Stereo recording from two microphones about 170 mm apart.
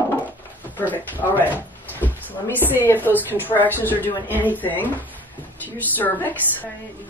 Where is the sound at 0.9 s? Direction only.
10° left (ahead or behind).